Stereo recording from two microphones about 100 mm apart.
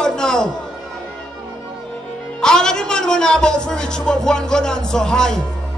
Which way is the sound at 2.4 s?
5° left (ahead or behind).